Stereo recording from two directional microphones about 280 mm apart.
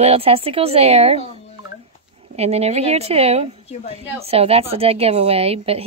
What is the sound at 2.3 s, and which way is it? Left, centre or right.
A woman's voice, right.